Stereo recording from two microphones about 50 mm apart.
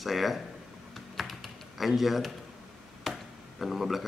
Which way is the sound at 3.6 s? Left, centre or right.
Centre.